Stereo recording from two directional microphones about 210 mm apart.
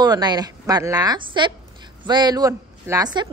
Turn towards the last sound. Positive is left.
turn(degrees=-20)  # may be behind; listen again after turning